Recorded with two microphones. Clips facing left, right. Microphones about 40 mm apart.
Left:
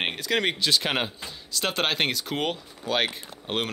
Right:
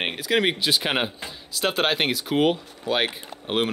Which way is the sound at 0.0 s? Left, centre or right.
Centre.